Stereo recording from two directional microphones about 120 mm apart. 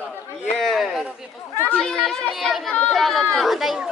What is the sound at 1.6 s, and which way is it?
Chatter, 10° left (ahead or behind).